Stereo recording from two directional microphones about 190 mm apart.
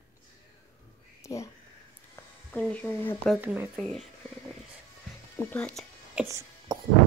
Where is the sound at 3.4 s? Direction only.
10° right (ahead or behind).